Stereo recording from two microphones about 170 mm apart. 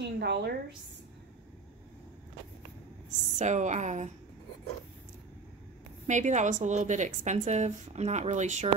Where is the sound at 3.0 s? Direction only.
45° right (ahead or behind).